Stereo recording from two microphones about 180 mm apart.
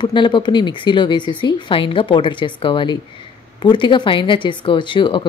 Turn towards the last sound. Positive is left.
turn(degrees=25)  # may be behind; listen again after turning